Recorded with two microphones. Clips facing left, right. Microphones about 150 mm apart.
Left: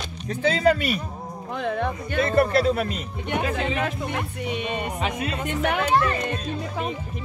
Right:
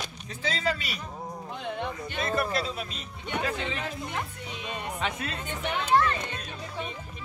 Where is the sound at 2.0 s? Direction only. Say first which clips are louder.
Left 9 dB; 60° left (ahead or behind).